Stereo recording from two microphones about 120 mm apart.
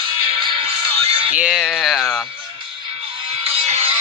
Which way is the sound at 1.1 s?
50° right (ahead or behind).